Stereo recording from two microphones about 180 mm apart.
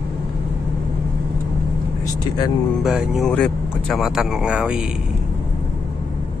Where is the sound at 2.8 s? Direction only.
5° right (ahead or behind).